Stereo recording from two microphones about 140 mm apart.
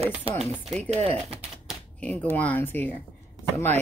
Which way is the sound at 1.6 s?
10° left (ahead or behind).